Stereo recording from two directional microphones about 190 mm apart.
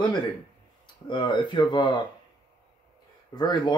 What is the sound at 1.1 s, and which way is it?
Speech, 25° left (ahead or behind).